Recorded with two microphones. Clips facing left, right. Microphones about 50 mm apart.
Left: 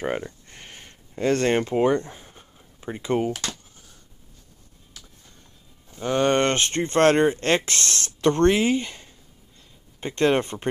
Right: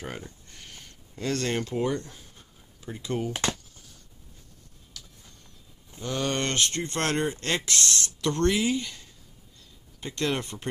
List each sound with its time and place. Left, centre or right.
0.0 s speech: left
5.9 s speech: left